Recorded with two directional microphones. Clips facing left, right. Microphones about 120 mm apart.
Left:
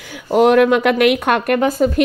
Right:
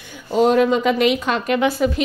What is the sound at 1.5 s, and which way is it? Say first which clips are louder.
Speech: left 3 dB; 40° left (ahead or behind).